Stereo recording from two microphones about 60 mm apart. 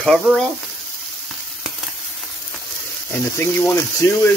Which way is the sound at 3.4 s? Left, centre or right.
Left.